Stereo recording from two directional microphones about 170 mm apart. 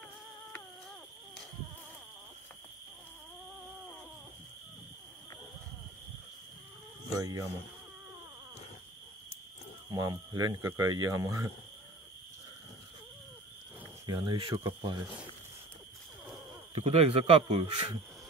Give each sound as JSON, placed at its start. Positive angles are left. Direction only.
{"t": 7.1, "sound": "speech", "side_deg": -20}
{"t": 9.8, "sound": "speech", "side_deg": -20}
{"t": 14.0, "sound": "speech", "side_deg": -25}
{"t": 16.7, "sound": "speech", "side_deg": -35}